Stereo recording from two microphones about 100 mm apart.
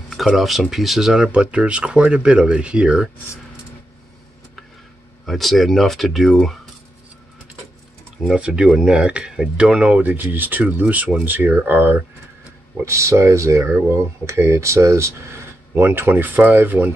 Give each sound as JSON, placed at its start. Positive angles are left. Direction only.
{"t": 0.1, "sound": "speech", "side_deg": 0}
{"t": 5.2, "sound": "speech", "side_deg": 0}
{"t": 8.3, "sound": "speech", "side_deg": -10}